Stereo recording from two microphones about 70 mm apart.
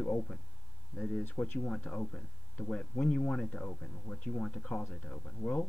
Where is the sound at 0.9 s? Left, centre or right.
Centre.